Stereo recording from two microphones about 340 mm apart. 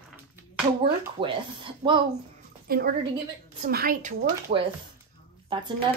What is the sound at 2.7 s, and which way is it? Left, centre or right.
A woman's voice, right.